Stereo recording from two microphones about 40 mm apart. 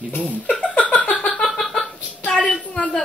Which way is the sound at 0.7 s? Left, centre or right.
Left.